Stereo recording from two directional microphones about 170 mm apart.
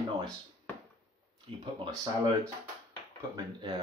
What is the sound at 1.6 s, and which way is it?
Speech, 25° right (ahead or behind).